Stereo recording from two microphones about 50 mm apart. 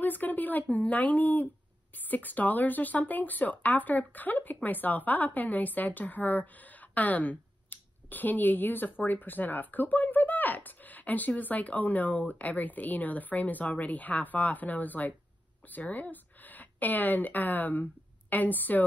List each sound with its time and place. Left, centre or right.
0.0 s a woman's voice: left